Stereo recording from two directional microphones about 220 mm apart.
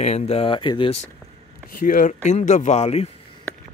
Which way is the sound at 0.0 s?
30° left (ahead or behind).